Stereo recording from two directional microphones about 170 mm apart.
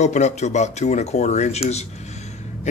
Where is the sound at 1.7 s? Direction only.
40° left (ahead or behind).